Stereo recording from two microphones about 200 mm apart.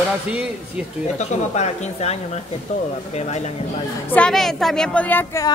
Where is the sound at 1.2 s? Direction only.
35° left (ahead or behind).